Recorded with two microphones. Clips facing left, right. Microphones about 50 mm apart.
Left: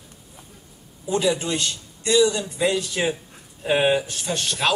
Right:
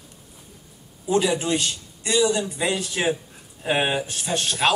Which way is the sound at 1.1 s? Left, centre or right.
Centre.